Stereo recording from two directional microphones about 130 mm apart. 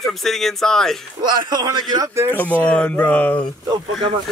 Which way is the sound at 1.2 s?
30° right (ahead or behind).